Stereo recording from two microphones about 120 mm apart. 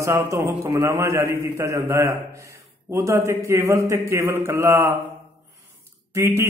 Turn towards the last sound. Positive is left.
turn(degrees=-20)  # may be behind; listen again after turning